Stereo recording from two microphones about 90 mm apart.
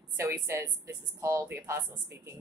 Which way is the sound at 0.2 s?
30° right (ahead or behind).